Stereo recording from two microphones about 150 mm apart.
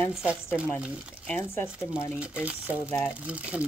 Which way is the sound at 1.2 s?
15° left (ahead or behind).